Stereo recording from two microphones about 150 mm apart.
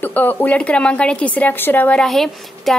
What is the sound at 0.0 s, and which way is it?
A woman's voice, 10° left (ahead or behind).